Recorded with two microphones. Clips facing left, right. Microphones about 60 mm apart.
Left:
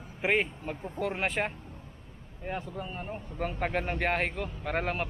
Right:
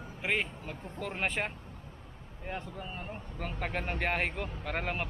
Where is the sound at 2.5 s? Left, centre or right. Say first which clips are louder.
Left 4 dB; centre.